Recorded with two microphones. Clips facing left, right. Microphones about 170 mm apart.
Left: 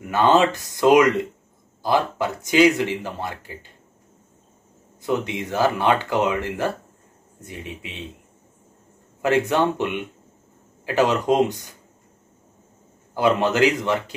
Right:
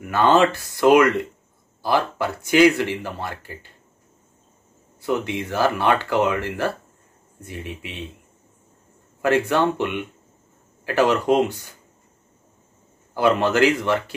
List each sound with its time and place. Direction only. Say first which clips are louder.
0.1 s speech: even; 15° left (ahead or behind)
5.0 s speech: even; 20° left (ahead or behind)
9.5 s speech: even; 15° left (ahead or behind)
13.4 s speech: right 1 dB; 15° left (ahead or behind)